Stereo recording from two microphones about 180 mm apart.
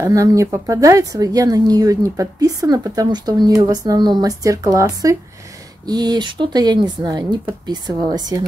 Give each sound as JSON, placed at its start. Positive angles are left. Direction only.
{"t": 0.0, "sound": "speech", "side_deg": -20}